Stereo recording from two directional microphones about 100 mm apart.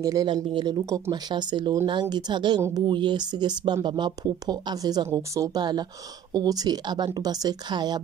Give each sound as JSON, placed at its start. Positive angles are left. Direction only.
{"t": 0.0, "sound": "speech", "side_deg": -35}
{"t": 0.3, "sound": "speech", "side_deg": -55}
{"t": 0.7, "sound": "speech", "side_deg": -35}
{"t": 1.1, "sound": "speech", "side_deg": -45}